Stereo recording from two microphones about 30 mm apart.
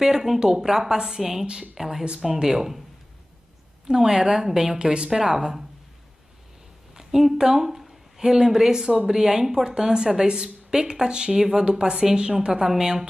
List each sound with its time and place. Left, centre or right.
0.0 s a woman's voice: centre
3.8 s a woman's voice: right
4.7 s a woman's voice: right
5.2 s speech: centre
7.0 s a woman's voice: centre